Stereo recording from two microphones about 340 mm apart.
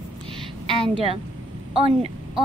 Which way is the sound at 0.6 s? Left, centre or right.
Centre.